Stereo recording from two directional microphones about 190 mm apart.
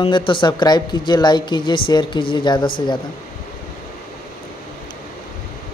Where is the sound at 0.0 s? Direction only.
25° left (ahead or behind).